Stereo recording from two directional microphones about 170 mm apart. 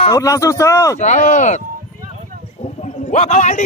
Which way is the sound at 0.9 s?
45° left (ahead or behind).